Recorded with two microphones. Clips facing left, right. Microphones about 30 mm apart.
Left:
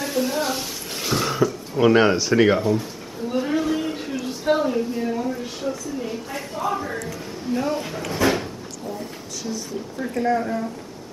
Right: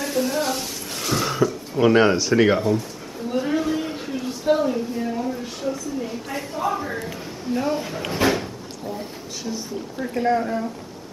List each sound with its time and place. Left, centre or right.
0.0 s speech: centre
3.3 s a sound: centre
8.3 s door: centre
8.9 s a sound: right
10.1 s speech: centre
10.4 s speech: centre